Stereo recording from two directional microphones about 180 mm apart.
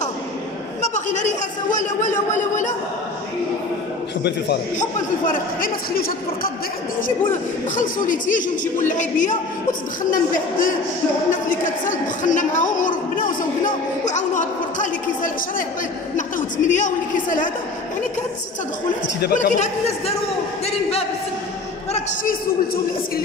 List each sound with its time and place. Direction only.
0.8 s speech: 40° left (ahead or behind)
4.7 s a woman's voice: 50° left (ahead or behind)
7.7 s a woman's voice: 50° left (ahead or behind)
19.3 s speech: 40° left (ahead or behind)
21.9 s a woman's voice: 50° left (ahead or behind)